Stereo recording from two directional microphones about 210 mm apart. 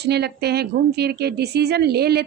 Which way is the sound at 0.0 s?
50° right (ahead or behind).